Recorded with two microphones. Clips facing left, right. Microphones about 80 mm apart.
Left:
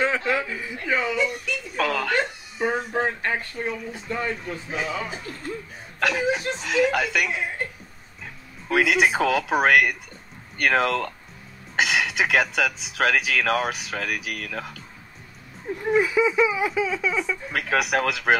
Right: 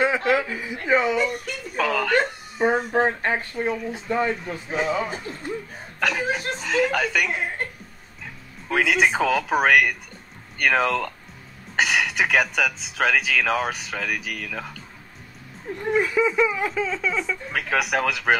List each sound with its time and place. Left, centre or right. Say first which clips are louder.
0.3 s speech: right 3 dB; centre
1.1 s speech: right 2 dB; right
1.8 s speech: right 2 dB; centre
2.8 s speech: right 4 dB; right
3.5 s speech: right 4 dB; centre
3.9 s speech: right 5 dB; centre
4.7 s speech: right 6 dB; right
5.9 s speech: left 1 dB; centre
7.2 s speech: right 1 dB; right
8.6 s speech: even; centre